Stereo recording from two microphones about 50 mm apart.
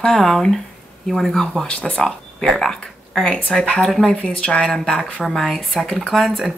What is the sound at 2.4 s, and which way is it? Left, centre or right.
Speech, centre.